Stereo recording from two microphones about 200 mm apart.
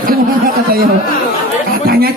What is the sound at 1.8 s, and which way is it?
Music, 50° right (ahead or behind).